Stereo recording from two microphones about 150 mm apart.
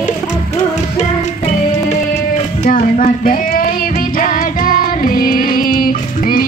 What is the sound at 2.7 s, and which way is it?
Music, 70° left (ahead or behind).